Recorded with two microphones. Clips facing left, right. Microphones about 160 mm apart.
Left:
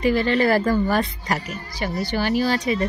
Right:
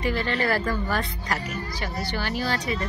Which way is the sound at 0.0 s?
15° left (ahead or behind).